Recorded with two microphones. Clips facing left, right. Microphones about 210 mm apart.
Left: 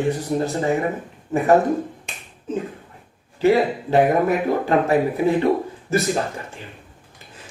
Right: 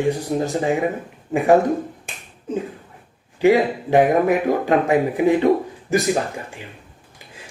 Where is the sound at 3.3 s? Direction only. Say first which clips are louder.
Right 1 dB; 15° right (ahead or behind).